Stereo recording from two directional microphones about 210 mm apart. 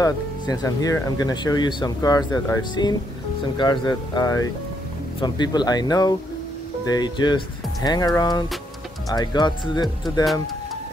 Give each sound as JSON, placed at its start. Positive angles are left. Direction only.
{"t": 0.0, "sound": "speech", "side_deg": 15}